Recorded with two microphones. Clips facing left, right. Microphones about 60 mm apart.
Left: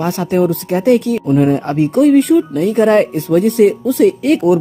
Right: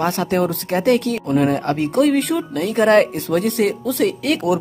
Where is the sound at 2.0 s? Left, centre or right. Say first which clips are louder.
Left 9 dB; right.